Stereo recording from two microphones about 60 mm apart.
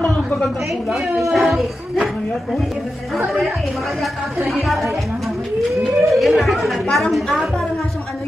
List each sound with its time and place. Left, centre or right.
0.0 s a sound: centre
0.8 s a woman's voice: centre
4.0 s a woman's voice: centre